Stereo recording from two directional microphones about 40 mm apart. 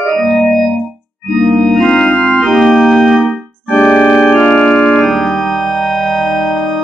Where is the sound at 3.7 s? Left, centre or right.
Centre.